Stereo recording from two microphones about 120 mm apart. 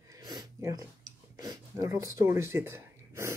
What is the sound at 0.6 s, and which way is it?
Speech, 30° right (ahead or behind).